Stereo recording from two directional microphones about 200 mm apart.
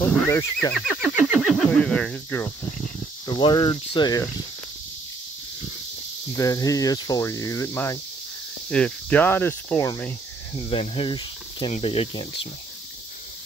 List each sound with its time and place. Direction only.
0.0 s neigh: 10° left (ahead or behind)
0.4 s speech: 15° left (ahead or behind)
0.7 s speech: centre (ahead or behind)
3.3 s speech: 25° left (ahead or behind)
6.3 s speech: 15° left (ahead or behind)
10.5 s speech: 30° left (ahead or behind)